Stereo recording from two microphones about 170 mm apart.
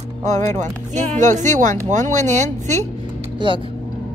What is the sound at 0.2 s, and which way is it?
Speech, 45° right (ahead or behind).